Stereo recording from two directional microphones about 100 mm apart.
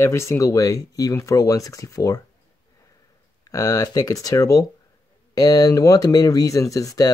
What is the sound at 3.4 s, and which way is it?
Speech, 35° left (ahead or behind).